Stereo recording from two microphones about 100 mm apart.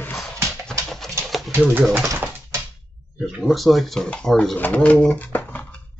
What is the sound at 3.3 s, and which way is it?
Speech, centre (ahead or behind).